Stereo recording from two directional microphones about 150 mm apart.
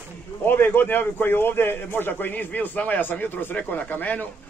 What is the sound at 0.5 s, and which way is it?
Speech, 15° left (ahead or behind).